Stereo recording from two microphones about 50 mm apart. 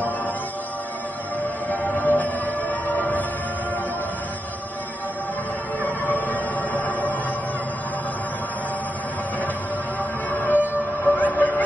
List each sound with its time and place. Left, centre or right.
1.4 s music: left
5.9 s music: left
10.3 s music: left